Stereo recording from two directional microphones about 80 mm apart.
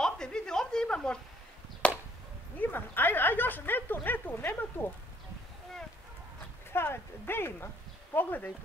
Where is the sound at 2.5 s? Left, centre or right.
Left.